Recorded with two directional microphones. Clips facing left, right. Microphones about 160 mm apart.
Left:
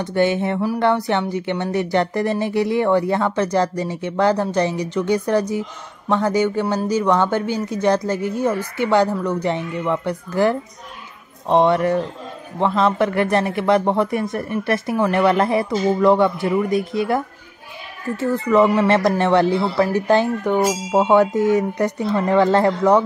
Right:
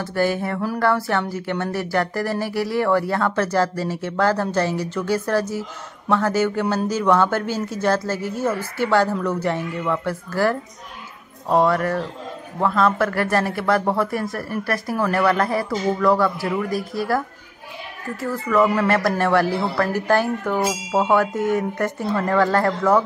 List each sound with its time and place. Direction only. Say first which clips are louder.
0.0 s a woman's voice: left 3 dB; 20° left (ahead or behind)
8.8 s a woman's voice: left 2 dB; 15° left (ahead or behind)
16.7 s speech: left 5 dB; centre (ahead or behind)
18.1 s speech: left 4 dB; 25° left (ahead or behind)